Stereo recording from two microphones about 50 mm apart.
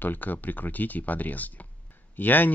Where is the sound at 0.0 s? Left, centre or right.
Left.